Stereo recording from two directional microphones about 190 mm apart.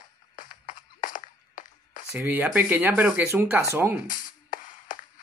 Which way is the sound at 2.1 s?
10° right (ahead or behind).